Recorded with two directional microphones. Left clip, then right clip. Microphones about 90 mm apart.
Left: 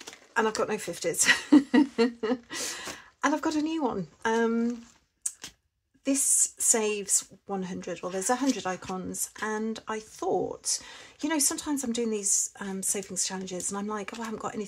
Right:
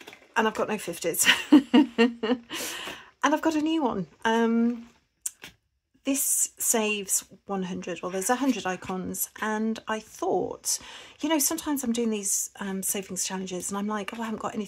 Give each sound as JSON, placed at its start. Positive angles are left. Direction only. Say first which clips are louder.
{"t": 0.3, "sound": "speech", "louder": "right 1 dB", "side_deg": -20}
{"t": 6.0, "sound": "speech", "louder": "left 1 dB", "side_deg": -25}